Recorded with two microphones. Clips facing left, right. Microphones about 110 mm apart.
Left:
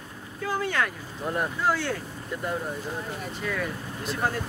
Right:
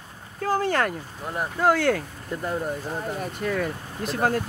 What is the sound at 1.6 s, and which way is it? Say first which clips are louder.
Speech: right 9 dB; 60° right (ahead or behind).